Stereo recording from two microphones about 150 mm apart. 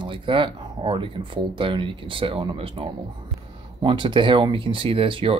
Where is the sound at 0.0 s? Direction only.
35° right (ahead or behind).